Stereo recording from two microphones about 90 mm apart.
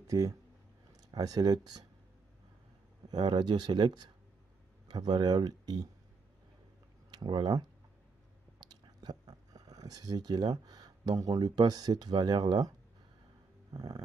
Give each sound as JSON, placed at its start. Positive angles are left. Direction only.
{"t": 0.0, "sound": "speech", "side_deg": -40}
{"t": 3.1, "sound": "speech", "side_deg": -60}
{"t": 7.1, "sound": "speech", "side_deg": -55}
{"t": 8.5, "sound": "speech", "side_deg": -50}
{"t": 13.7, "sound": "speech", "side_deg": -45}